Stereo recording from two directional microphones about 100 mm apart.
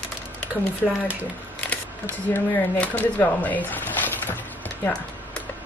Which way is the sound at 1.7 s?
20° left (ahead or behind).